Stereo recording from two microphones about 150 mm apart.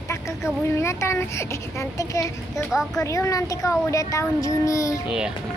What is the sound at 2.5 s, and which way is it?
Speech, centre (ahead or behind).